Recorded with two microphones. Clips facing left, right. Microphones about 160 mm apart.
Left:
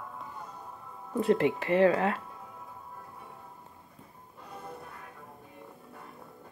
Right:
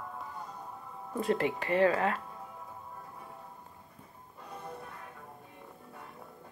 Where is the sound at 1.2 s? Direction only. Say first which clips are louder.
Left 5 dB; 15° left (ahead or behind).